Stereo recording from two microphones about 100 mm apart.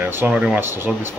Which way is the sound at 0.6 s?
20° right (ahead or behind).